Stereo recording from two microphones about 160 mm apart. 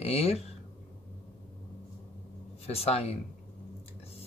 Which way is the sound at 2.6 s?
40° left (ahead or behind).